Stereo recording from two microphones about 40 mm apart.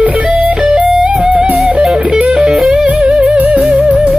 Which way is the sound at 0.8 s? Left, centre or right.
Right.